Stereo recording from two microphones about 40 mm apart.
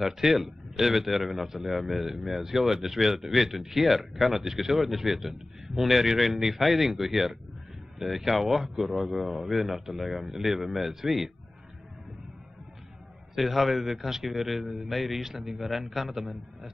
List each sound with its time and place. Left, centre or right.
0.0 s a man's voice: centre
13.4 s a man's voice: centre